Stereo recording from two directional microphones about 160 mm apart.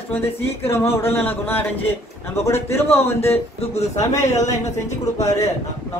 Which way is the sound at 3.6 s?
40° left (ahead or behind).